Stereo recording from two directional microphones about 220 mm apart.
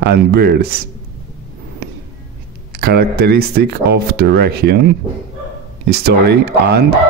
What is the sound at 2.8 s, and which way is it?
Speech, 45° right (ahead or behind).